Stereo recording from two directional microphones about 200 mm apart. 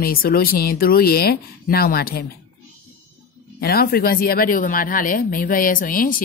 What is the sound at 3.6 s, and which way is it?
A woman's voice, 50° left (ahead or behind).